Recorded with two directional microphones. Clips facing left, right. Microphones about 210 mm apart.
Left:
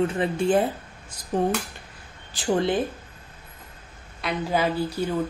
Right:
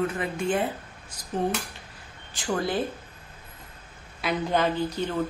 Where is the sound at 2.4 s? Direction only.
25° left (ahead or behind).